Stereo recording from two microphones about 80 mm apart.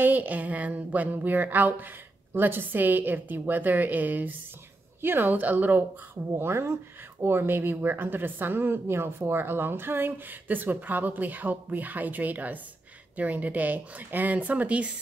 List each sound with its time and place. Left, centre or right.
0.0 s a woman's voice: right
6.3 s a woman's voice: right; by 14.9 s centre